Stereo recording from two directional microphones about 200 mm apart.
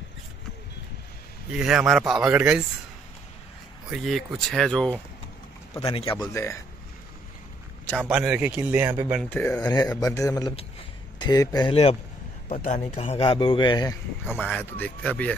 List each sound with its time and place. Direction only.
1.5 s speech: 5° right (ahead or behind)
3.9 s speech: centre (ahead or behind)
6.0 s speech: 20° left (ahead or behind)
8.0 s speech: 5° right (ahead or behind)
9.2 s speech: 10° left (ahead or behind)
11.7 s speech: 30° left (ahead or behind)
14.4 s speech: 10° left (ahead or behind)